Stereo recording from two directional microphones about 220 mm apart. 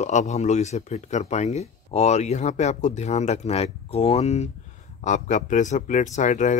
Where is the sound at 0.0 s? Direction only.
30° left (ahead or behind).